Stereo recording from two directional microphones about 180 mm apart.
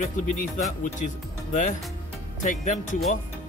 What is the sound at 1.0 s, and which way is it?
Speech, 45° left (ahead or behind).